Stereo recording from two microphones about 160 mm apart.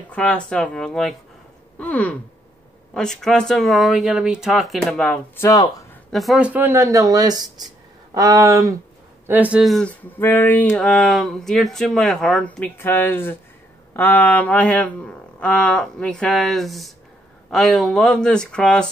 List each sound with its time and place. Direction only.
0.1 s speech: 5° left (ahead or behind)
1.8 s gasp: 10° left (ahead or behind)
2.9 s speech: 5° left (ahead or behind)
5.4 s speech: 20° left (ahead or behind)
6.1 s speech: centre (ahead or behind)